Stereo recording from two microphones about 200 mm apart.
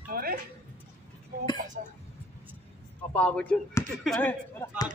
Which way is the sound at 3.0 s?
5° left (ahead or behind).